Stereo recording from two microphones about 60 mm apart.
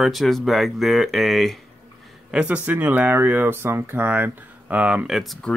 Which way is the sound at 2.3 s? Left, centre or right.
Right.